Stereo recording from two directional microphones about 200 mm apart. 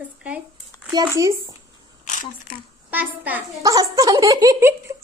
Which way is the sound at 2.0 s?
40° left (ahead or behind).